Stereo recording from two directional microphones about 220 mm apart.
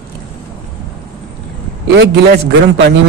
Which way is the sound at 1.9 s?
50° right (ahead or behind).